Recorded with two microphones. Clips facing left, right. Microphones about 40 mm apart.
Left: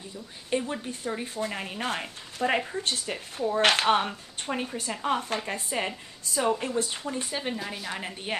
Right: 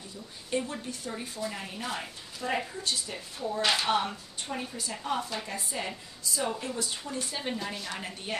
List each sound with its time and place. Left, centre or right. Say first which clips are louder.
0.5 s a woman's voice: left 3 dB; left
7.3 s a woman's voice: left 2 dB; centre
7.9 s a woman's voice: left 3 dB; left